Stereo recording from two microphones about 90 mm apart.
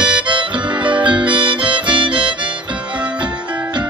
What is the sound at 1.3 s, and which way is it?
Harmonica, 65° right (ahead or behind).